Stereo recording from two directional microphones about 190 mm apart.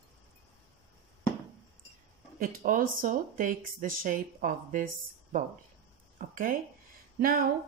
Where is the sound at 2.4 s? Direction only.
45° right (ahead or behind).